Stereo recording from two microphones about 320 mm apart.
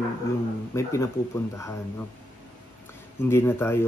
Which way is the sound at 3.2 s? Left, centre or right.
Centre.